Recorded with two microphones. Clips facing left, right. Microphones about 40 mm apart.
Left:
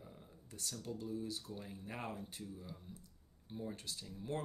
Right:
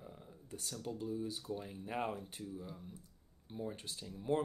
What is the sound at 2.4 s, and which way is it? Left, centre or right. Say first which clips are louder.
Speech: right 3 dB; centre.